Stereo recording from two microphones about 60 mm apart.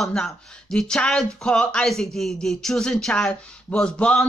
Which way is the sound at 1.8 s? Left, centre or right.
Centre.